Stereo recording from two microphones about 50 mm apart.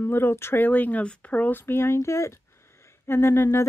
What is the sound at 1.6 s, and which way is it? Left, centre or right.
Speech, left.